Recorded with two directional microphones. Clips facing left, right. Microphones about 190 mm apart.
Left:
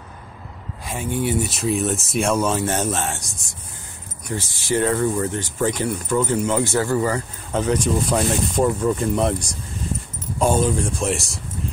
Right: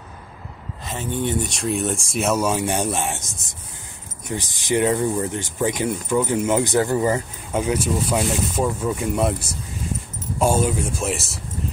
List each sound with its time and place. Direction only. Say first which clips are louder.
0.8 s speech: left 1 dB; 10° left (ahead or behind)